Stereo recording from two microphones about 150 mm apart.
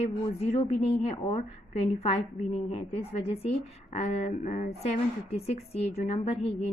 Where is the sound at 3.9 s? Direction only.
45° left (ahead or behind).